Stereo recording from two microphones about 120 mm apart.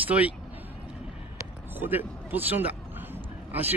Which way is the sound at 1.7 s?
15° right (ahead or behind).